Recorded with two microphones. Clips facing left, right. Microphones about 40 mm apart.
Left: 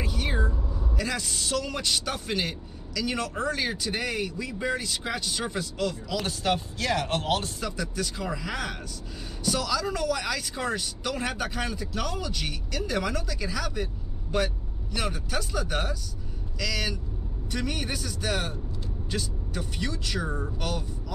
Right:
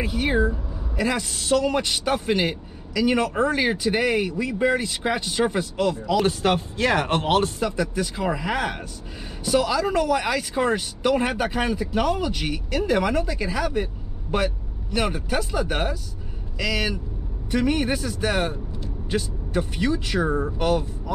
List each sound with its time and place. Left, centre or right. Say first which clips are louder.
0.0 s vehicle: right 7 dB; right
0.4 s speech: right 7 dB; centre
6.2 s speech: right 6 dB; right